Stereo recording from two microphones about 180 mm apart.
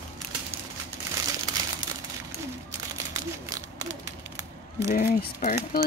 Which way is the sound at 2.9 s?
20° right (ahead or behind).